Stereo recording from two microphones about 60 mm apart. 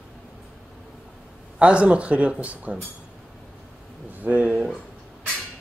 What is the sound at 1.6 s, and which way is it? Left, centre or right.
Speech, centre.